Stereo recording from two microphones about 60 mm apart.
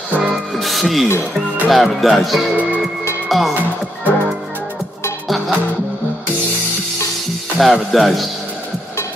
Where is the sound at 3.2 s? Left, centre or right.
Centre.